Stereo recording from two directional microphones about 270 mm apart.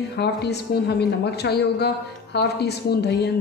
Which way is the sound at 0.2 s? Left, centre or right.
Left.